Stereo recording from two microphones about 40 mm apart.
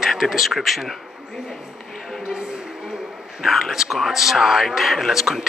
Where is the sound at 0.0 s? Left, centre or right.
Centre.